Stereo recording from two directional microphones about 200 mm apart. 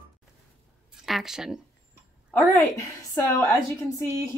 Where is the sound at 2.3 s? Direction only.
15° left (ahead or behind).